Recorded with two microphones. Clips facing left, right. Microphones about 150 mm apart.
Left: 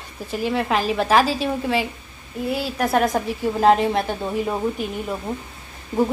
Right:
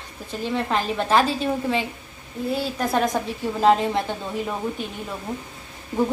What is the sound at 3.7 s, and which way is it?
A woman's voice, 10° left (ahead or behind).